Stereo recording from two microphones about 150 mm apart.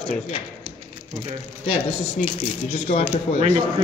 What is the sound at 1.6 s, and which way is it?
Speech, 45° left (ahead or behind).